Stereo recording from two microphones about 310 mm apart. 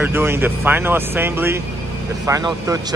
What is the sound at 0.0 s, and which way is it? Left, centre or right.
Speech, centre.